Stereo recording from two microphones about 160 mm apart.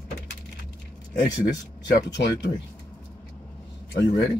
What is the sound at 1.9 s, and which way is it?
Speech, 90° left.